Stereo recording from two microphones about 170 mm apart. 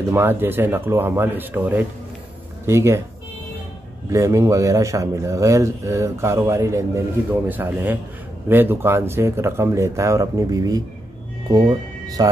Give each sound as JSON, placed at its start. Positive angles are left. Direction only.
{"t": 0.1, "sound": "speech", "side_deg": -15}
{"t": 4.1, "sound": "speech", "side_deg": -20}